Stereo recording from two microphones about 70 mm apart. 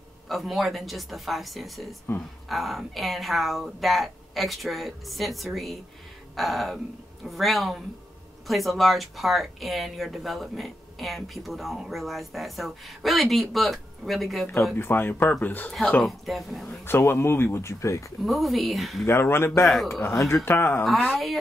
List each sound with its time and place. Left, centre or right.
0.3 s speech: centre
14.8 s speech: left
16.0 s speech: centre
16.8 s speech: left
18.2 s speech: centre
19.0 s speech: left
19.6 s speech: centre
19.9 s speech: left
21.1 s speech: centre